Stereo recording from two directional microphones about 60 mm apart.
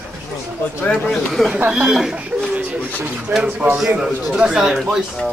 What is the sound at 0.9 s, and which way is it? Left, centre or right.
Speech, centre.